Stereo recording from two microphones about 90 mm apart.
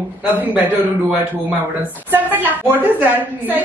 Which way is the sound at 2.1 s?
20° right (ahead or behind).